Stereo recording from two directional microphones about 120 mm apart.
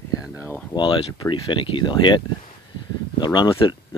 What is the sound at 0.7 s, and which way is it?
Speech, 40° left (ahead or behind).